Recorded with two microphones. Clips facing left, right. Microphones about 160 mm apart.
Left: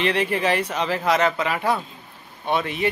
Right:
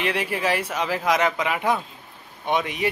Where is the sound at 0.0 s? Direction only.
10° right (ahead or behind).